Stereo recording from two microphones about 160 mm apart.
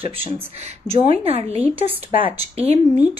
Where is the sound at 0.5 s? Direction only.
45° right (ahead or behind).